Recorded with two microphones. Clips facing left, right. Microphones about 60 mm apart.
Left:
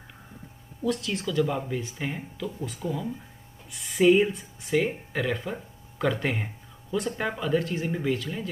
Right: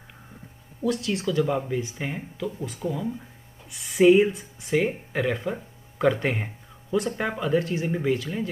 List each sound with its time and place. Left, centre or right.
0.8 s speech: centre
4.1 s speech: centre
4.7 s speech: centre